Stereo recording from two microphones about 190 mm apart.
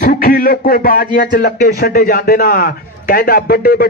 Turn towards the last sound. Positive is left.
turn(degrees=50)  # may be behind; listen again after turning